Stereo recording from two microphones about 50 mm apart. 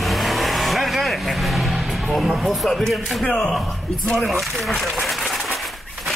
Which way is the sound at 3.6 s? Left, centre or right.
Centre.